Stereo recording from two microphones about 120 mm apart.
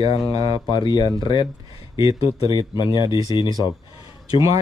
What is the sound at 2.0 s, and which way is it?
Speech, 30° right (ahead or behind).